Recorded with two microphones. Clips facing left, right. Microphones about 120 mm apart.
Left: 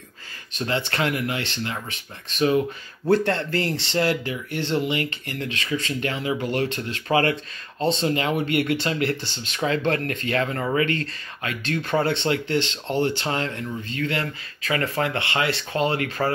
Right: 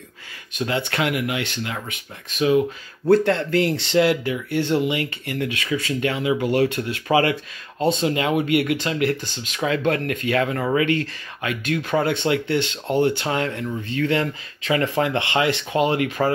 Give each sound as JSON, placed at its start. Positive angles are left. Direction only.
{"t": 0.6, "sound": "speech", "side_deg": -10}
{"t": 12.0, "sound": "speech", "side_deg": -10}